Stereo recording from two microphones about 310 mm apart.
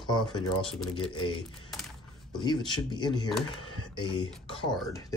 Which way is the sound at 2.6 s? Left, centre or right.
Centre.